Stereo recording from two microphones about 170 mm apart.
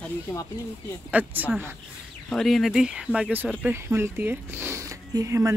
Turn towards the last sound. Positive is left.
turn(degrees=-20)  # may be behind; listen again after turning